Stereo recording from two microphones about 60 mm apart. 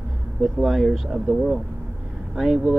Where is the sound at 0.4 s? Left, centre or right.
Centre.